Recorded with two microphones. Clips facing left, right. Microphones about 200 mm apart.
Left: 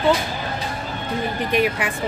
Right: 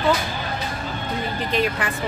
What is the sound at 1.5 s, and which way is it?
Speech, 15° left (ahead or behind).